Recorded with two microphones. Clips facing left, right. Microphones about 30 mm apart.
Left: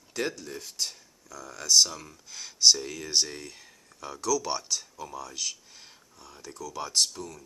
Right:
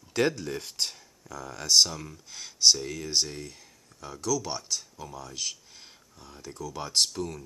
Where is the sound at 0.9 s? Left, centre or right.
Right.